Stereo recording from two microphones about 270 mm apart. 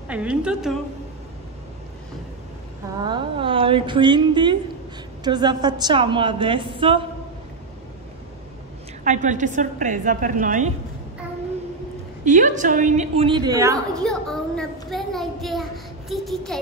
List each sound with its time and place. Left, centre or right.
0.1 s a child's voice: centre
3.0 s a woman's voice: centre
9.0 s a woman's voice: right
12.3 s a woman's voice: right; by 13.7 s centre
13.9 s a child's voice: centre